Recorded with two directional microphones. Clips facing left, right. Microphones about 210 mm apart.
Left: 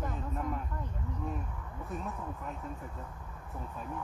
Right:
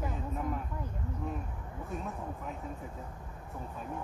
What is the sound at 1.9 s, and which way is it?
Speech, centre (ahead or behind).